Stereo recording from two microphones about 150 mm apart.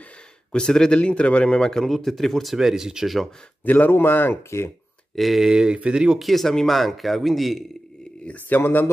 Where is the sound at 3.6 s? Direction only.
10° left (ahead or behind).